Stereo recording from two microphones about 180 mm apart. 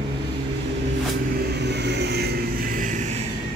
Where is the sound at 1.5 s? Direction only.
70° right (ahead or behind); by 3.2 s 45° right (ahead or behind).